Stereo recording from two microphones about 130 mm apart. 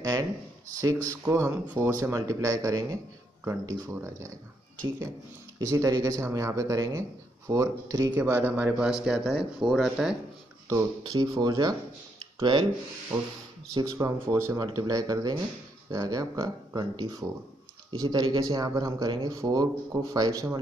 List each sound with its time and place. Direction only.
0.0 s a sound: 25° right (ahead or behind)
0.7 s speech: 25° right (ahead or behind)
5.6 s speech: 25° right (ahead or behind); by 10.1 s 5° right (ahead or behind)
10.7 s speech: 30° right (ahead or behind)